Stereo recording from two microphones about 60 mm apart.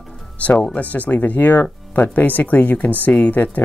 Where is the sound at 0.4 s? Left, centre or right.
Left.